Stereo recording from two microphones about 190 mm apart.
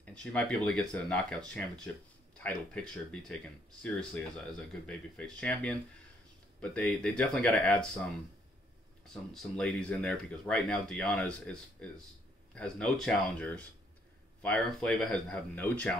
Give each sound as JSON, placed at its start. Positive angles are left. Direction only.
{"t": 0.0, "sound": "speech", "side_deg": 5}
{"t": 9.1, "sound": "speech", "side_deg": 0}